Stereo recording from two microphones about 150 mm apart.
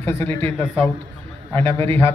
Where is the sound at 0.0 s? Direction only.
10° left (ahead or behind).